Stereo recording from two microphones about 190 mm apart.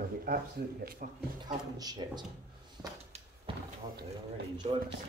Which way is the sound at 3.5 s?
30° right (ahead or behind).